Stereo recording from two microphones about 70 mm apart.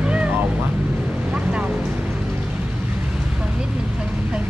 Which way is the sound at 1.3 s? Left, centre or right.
Centre.